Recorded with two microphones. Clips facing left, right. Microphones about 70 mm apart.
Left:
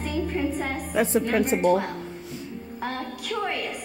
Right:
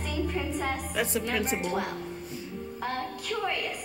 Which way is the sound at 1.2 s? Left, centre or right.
Left.